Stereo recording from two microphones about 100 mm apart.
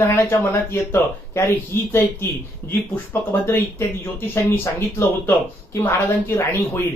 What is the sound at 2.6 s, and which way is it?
Speech, 25° left (ahead or behind).